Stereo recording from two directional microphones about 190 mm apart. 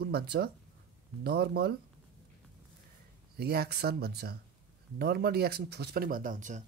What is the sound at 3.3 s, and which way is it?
Speech, 55° right (ahead or behind).